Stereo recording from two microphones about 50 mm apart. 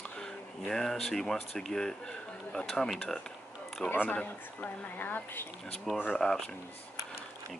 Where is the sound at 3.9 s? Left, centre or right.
Left.